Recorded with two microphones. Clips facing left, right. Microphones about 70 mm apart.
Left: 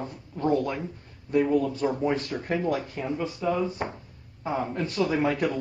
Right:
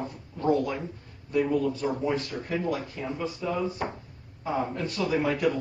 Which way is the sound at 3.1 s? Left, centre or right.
Left.